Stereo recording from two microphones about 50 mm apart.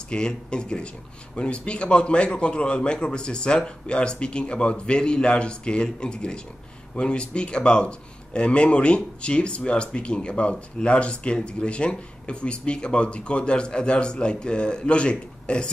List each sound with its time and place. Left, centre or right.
0.1 s speech: centre